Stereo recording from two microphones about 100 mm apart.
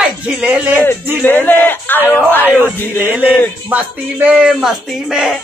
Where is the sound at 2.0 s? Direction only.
20° left (ahead or behind).